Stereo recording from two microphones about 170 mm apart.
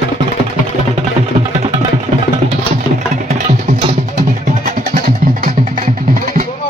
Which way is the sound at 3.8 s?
45° right (ahead or behind).